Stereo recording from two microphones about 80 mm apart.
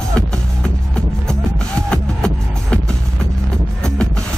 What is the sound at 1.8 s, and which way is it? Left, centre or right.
Music, centre.